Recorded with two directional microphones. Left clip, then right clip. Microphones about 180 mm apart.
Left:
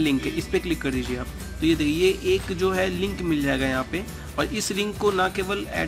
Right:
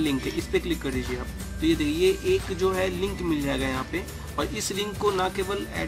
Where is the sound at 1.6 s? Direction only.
10° left (ahead or behind).